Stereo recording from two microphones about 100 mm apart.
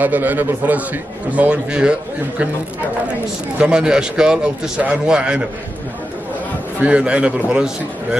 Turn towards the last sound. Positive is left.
turn(degrees=-10)  # may be behind; listen again after turning